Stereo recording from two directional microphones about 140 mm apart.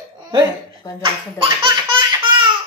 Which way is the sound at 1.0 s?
40° right (ahead or behind).